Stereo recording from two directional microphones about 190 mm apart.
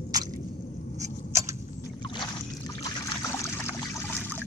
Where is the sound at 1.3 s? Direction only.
15° right (ahead or behind).